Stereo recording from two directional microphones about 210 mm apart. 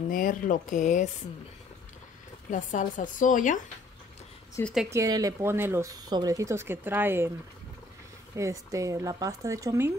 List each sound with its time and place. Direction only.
0.1 s speech: 40° left (ahead or behind)
2.5 s speech: 40° left (ahead or behind)
4.6 s a woman's voice: 10° left (ahead or behind)
4.9 s speech: 15° right (ahead or behind)
8.4 s speech: 15° right (ahead or behind)